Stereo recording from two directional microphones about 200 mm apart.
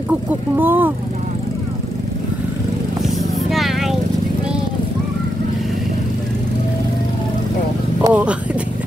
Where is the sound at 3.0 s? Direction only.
Centre (ahead or behind).